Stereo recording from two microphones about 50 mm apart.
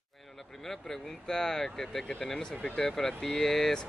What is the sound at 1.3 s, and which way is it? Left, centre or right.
Speech, centre.